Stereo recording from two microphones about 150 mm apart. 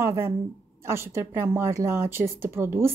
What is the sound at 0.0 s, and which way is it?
Speech, 15° right (ahead or behind).